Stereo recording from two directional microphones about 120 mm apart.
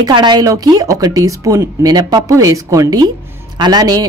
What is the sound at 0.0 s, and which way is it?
A woman's voice, 35° right (ahead or behind).